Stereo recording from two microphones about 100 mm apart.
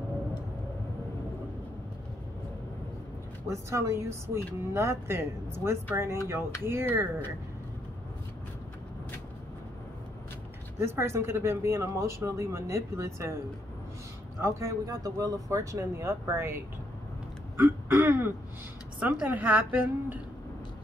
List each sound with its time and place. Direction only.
3.4 s speech: 30° right (ahead or behind)
10.8 s speech: 25° right (ahead or behind)
14.4 s speech: 35° right (ahead or behind)
17.6 s throat clearing: 20° right (ahead or behind)
18.9 s a woman's voice: 15° right (ahead or behind)